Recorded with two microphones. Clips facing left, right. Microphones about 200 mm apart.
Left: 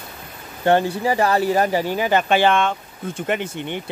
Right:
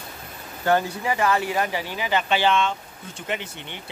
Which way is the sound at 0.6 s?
30° left (ahead or behind).